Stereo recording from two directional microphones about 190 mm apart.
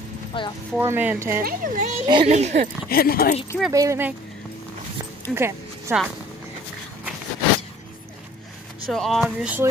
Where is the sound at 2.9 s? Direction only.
50° left (ahead or behind).